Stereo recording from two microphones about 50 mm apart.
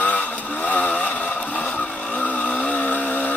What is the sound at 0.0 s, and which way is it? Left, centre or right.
Vehicle, left.